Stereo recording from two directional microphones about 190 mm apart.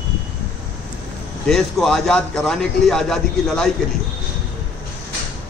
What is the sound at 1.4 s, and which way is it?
A man's voice, centre (ahead or behind).